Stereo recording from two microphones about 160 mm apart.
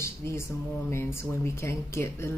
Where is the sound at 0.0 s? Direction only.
15° left (ahead or behind).